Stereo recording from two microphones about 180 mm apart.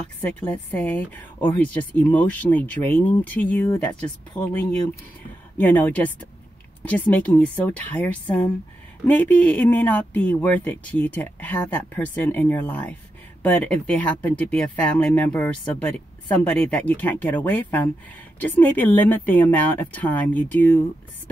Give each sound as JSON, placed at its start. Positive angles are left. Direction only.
{"t": 0.2, "sound": "speech", "side_deg": 10}
{"t": 5.6, "sound": "speech", "side_deg": 10}